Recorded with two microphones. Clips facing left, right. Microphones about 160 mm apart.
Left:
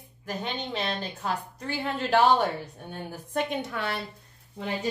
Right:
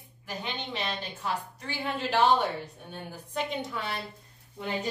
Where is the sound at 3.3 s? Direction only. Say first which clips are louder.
Left 3 dB; 60° left (ahead or behind).